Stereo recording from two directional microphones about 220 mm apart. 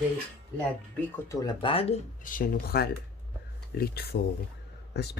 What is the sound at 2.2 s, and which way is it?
Speech, 40° left (ahead or behind).